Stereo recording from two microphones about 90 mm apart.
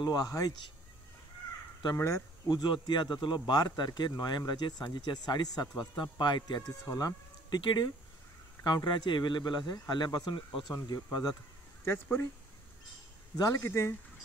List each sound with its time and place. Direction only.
0.0 s speech: 45° left (ahead or behind)
2.0 s speech: 35° left (ahead or behind)
2.5 s speech: 55° left (ahead or behind)
6.9 s speech: 40° left (ahead or behind)
11.8 s speech: 25° left (ahead or behind)
13.6 s speech: 30° left (ahead or behind)